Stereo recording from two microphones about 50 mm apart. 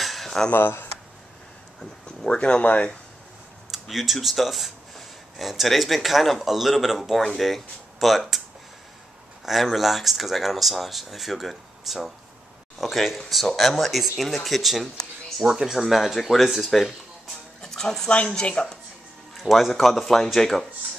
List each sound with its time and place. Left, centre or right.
0.0 s a sound: centre
0.5 s speech: left
2.3 s speech: left
3.8 s speech: centre
9.5 s speech: centre
15.0 s a sound: centre
15.4 s speech: centre
17.6 s a sound: centre
18.3 s speech: centre
19.3 s speech: centre